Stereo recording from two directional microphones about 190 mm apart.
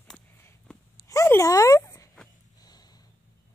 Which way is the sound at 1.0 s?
15° left (ahead or behind).